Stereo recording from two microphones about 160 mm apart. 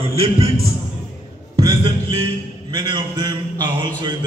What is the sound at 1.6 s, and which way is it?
A man's voice, 30° right (ahead or behind).